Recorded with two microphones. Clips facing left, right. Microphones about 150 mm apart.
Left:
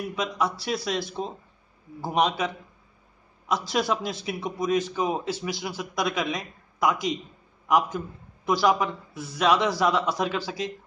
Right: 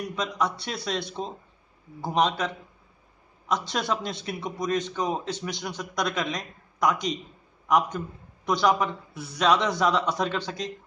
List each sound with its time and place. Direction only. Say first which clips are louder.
0.0 s a man's voice: left 1 dB; 5° left (ahead or behind)